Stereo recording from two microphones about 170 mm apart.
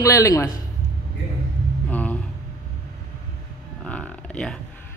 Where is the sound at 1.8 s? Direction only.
10° left (ahead or behind).